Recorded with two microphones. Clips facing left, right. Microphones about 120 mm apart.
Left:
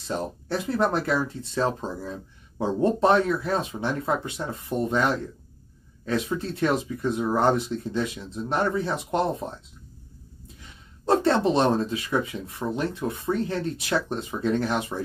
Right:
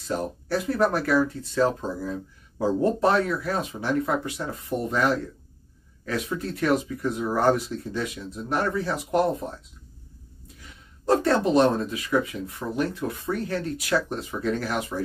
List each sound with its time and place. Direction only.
0.0 s speech: 25° left (ahead or behind)
11.1 s speech: 25° left (ahead or behind)